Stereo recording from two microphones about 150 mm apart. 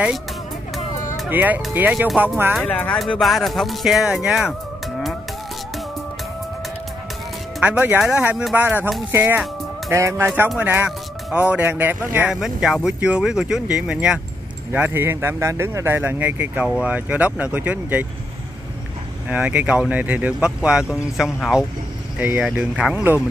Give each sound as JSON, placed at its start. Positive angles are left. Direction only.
{"t": 0.7, "sound": "music", "side_deg": 55}
{"t": 1.3, "sound": "speech", "side_deg": -10}
{"t": 2.5, "sound": "speech", "side_deg": 10}
{"t": 7.6, "sound": "speech", "side_deg": -10}
{"t": 19.2, "sound": "speech", "side_deg": -10}